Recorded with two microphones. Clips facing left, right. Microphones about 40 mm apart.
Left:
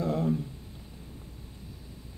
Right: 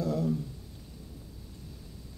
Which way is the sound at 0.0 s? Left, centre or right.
Left.